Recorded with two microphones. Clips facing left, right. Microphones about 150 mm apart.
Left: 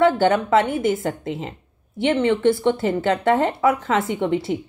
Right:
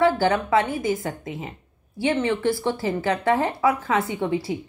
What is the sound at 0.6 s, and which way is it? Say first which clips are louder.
A woman's voice: left 3 dB; 25° left (ahead or behind).